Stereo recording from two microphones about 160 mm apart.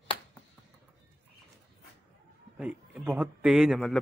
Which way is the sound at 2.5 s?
10° right (ahead or behind).